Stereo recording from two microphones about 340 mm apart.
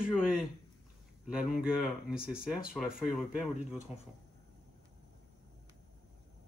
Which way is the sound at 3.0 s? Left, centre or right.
Centre.